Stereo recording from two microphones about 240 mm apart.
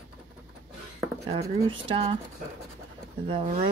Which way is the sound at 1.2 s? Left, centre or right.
Right.